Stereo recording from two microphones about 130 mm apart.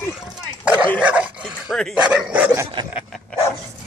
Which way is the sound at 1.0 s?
10° right (ahead or behind).